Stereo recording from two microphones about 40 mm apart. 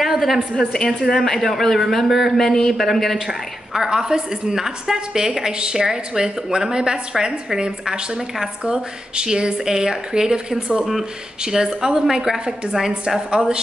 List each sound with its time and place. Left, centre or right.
0.0 s a sound: centre
1.1 s speech: centre
2.3 s a woman's voice: centre
3.3 s a woman's voice: centre